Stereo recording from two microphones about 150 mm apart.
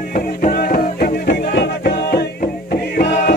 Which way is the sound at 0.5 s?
80° left.